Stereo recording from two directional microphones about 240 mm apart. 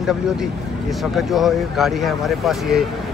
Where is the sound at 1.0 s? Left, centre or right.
Centre.